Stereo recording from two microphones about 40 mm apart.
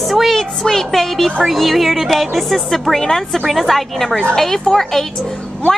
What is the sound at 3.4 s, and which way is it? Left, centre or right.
Speech, centre.